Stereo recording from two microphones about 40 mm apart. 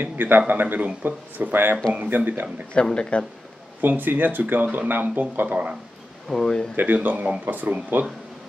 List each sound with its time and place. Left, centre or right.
0.0 s speech: right
2.7 s speech: left
3.8 s speech: right
5.5 s speech: right
6.2 s speech: centre
6.7 s speech: right